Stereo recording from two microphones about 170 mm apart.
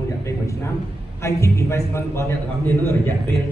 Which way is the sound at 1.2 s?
15° left (ahead or behind).